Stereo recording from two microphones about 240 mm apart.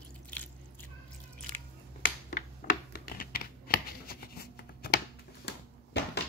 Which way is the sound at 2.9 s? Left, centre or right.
Left.